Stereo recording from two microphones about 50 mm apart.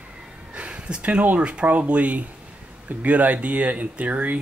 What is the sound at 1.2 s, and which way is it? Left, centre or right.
Speech, right.